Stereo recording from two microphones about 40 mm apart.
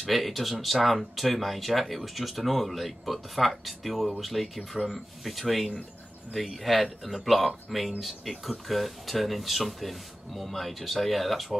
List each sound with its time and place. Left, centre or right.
0.0 s speech: centre